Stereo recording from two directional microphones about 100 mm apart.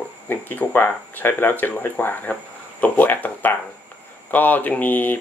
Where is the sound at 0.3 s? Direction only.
20° left (ahead or behind).